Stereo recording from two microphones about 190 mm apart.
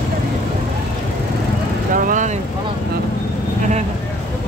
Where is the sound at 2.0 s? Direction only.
45° right (ahead or behind).